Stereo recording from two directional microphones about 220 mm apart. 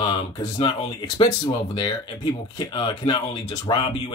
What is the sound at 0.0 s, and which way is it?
Speech, 20° left (ahead or behind).